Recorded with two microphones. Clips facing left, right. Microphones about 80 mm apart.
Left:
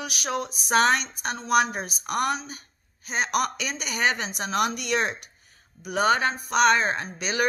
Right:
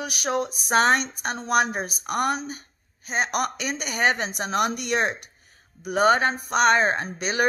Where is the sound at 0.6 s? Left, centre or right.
Right.